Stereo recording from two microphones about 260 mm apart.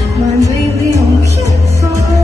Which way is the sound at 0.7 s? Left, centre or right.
Centre.